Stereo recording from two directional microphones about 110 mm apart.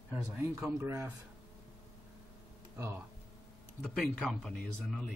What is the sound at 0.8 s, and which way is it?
Speech, 25° right (ahead or behind).